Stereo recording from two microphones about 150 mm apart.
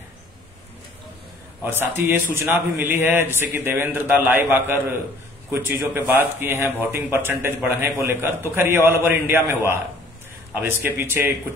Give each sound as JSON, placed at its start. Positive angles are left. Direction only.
{"t": 1.6, "sound": "a man's voice", "side_deg": -15}